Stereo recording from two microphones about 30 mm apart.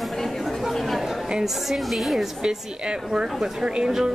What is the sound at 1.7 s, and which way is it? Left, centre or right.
Speech, centre.